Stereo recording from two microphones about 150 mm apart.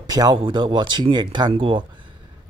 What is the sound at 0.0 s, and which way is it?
Speech, 25° right (ahead or behind).